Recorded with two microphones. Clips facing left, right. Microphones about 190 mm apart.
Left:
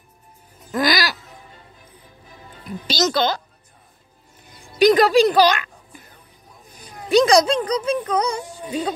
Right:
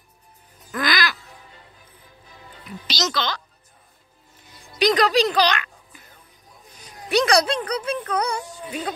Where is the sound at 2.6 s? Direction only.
50° left (ahead or behind).